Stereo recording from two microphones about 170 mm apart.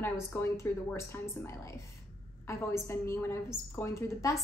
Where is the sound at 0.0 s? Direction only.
15° left (ahead or behind).